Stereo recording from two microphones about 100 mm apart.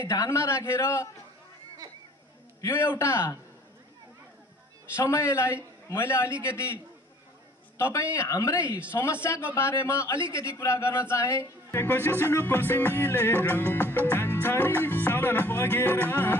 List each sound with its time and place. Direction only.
0.0 s a man's voice: 30° left (ahead or behind)
2.7 s a man's voice: 25° left (ahead or behind)
5.0 s a man's voice: 30° left (ahead or behind)
7.7 s a man's voice: 30° left (ahead or behind)
8.5 s speech: 15° right (ahead or behind)
8.9 s a man's voice: 25° left (ahead or behind)